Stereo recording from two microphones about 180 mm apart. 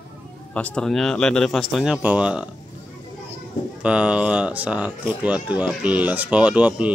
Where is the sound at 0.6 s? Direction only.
5° left (ahead or behind).